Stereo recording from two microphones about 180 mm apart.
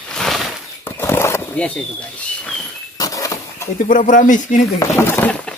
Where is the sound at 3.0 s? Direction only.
20° left (ahead or behind).